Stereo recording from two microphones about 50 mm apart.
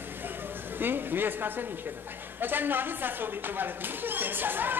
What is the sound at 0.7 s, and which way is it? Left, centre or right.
Speech, right.